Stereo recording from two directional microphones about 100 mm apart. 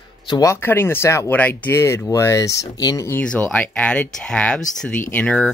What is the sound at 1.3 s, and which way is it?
Speech, 15° left (ahead or behind).